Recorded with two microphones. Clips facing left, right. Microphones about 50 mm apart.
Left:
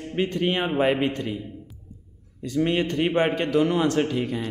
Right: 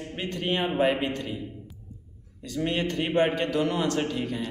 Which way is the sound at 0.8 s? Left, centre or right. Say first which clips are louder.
Left 3 dB; left.